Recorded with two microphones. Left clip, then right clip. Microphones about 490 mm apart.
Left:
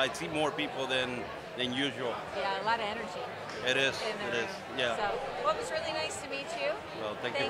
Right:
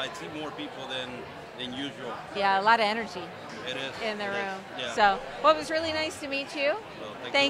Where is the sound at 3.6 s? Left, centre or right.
Left.